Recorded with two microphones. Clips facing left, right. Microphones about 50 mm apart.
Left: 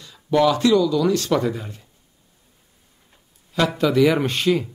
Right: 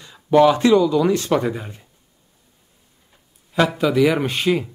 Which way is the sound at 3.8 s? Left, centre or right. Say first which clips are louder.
Left 2 dB; centre.